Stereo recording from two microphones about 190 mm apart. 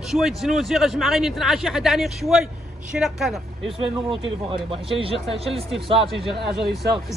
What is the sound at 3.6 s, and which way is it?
Speech, 30° right (ahead or behind).